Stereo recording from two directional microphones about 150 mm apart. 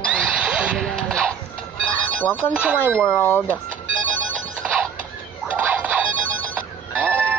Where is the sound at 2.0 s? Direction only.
10° left (ahead or behind).